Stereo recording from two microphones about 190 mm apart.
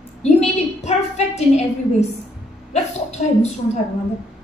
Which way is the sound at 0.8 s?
35° left (ahead or behind).